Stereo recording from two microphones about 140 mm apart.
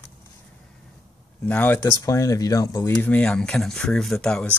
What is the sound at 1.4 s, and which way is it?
Speech, 10° left (ahead or behind).